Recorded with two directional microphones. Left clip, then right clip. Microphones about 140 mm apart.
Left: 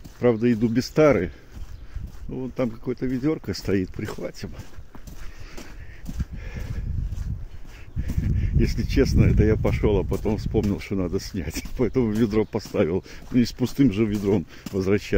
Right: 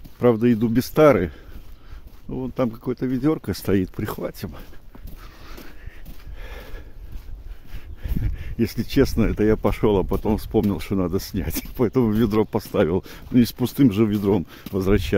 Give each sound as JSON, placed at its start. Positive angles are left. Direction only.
{"t": 0.2, "sound": "speech", "side_deg": -50}
{"t": 2.3, "sound": "speech", "side_deg": -45}
{"t": 8.0, "sound": "speech", "side_deg": -50}